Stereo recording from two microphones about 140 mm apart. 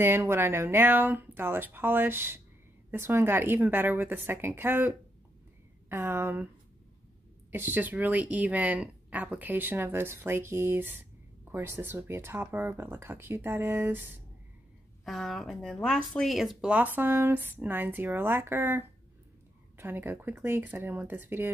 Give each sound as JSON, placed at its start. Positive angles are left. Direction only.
{"t": 0.0, "sound": "speech", "side_deg": -15}
{"t": 7.5, "sound": "speech", "side_deg": -15}
{"t": 15.0, "sound": "a woman's voice", "side_deg": 0}